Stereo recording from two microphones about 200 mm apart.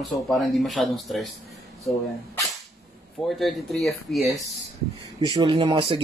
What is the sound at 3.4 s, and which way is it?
Speech, centre (ahead or behind).